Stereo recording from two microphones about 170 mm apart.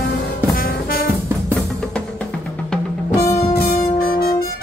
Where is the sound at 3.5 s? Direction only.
65° left (ahead or behind).